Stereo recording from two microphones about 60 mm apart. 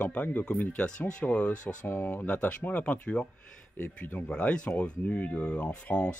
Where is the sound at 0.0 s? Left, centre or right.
Left.